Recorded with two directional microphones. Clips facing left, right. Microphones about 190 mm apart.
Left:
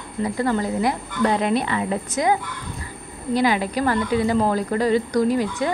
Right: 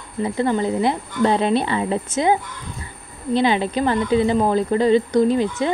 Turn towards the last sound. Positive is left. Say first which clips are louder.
# right 2 dB
turn(degrees=-25)  # may be behind; listen again after turning